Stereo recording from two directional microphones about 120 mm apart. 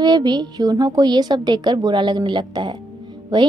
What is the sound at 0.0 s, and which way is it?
A woman's voice, 35° right (ahead or behind).